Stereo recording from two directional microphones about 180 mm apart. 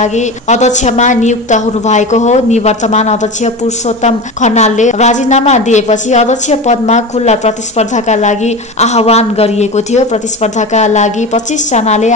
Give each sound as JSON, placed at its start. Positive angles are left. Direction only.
{"t": 0.0, "sound": "a woman's voice", "side_deg": 40}